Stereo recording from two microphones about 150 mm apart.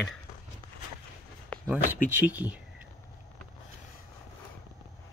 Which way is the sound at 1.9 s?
10° right (ahead or behind).